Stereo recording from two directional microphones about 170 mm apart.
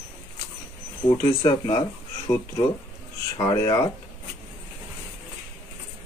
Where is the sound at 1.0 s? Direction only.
25° left (ahead or behind).